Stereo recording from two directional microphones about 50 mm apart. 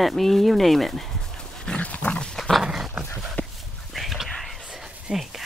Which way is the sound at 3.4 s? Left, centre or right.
Left.